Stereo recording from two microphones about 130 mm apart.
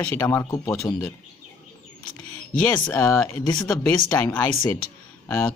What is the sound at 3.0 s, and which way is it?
Speech, 20° left (ahead or behind).